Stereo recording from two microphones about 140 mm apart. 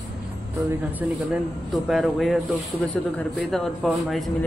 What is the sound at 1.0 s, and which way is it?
A man's voice, 10° right (ahead or behind).